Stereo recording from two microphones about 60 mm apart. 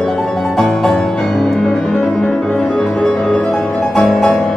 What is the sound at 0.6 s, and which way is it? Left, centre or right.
Music, centre.